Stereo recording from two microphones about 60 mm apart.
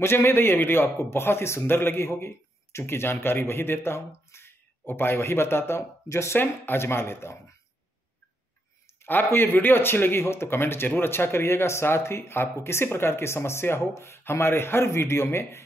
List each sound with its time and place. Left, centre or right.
0.0 s a man's voice: left
5.8 s speech: left
6.3 s speech: left
9.0 s speech: left